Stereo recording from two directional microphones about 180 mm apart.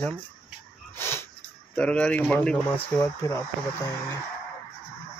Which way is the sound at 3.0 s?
15° left (ahead or behind).